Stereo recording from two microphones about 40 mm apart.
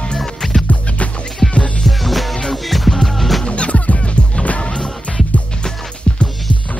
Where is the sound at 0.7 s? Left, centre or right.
Left.